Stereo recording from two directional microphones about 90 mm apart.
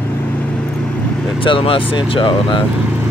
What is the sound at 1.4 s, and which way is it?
Speech, 85° left.